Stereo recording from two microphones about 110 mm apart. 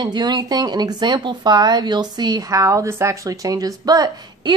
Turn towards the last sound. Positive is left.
turn(degrees=-40)  # may be behind; listen again after turning